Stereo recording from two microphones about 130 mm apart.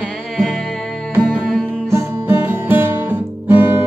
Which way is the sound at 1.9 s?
15° right (ahead or behind).